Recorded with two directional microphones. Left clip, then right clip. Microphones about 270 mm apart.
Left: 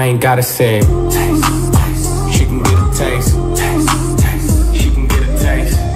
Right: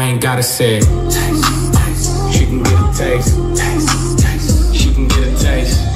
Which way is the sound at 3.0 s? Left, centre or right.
Left.